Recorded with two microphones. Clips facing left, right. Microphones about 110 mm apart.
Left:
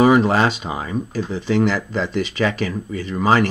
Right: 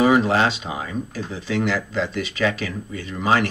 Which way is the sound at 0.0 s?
45° left (ahead or behind).